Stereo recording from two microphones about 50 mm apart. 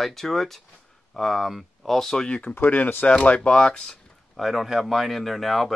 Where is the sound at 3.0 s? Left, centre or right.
Left.